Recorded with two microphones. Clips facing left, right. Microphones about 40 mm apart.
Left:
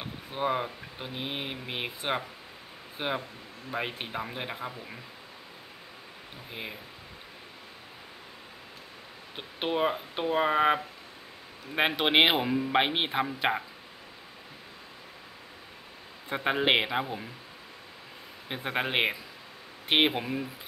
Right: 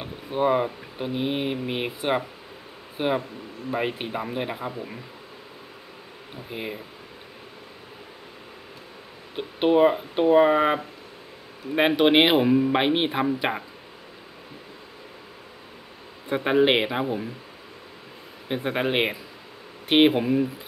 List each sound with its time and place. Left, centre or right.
0.0 s speech: centre
6.5 s speech: centre
9.3 s speech: centre
16.3 s speech: centre
18.5 s speech: centre